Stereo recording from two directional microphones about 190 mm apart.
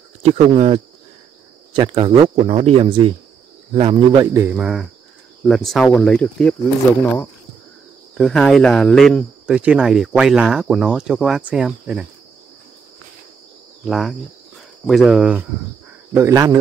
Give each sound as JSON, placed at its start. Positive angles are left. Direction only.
{"t": 0.2, "sound": "speech", "side_deg": -35}
{"t": 8.2, "sound": "speech", "side_deg": 0}
{"t": 13.8, "sound": "speech", "side_deg": 0}